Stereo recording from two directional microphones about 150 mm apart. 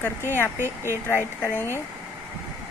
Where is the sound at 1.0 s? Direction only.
15° left (ahead or behind).